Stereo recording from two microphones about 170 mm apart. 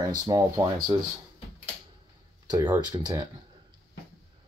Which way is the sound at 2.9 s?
25° right (ahead or behind).